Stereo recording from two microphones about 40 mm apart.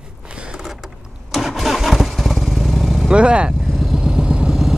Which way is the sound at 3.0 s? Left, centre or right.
Right.